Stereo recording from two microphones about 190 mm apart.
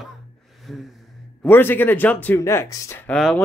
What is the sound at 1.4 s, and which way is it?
Speech, 10° left (ahead or behind).